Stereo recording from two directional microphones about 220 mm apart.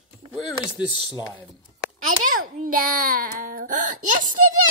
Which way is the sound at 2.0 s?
35° right (ahead or behind).